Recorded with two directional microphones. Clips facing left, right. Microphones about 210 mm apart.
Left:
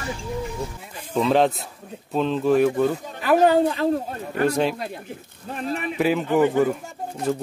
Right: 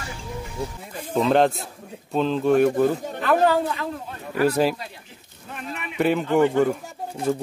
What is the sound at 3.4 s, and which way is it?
Speech, 30° left (ahead or behind).